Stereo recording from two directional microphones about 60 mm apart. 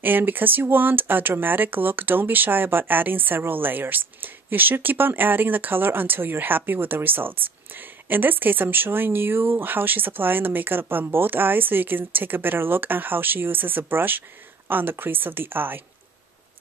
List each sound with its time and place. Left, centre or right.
0.0 s speech: right